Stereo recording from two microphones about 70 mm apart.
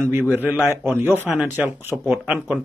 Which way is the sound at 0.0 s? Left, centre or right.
Right.